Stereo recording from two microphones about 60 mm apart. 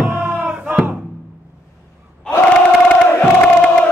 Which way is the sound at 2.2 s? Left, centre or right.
Centre.